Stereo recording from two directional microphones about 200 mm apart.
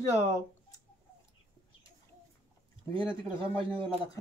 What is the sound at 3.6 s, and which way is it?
Speech, 25° right (ahead or behind).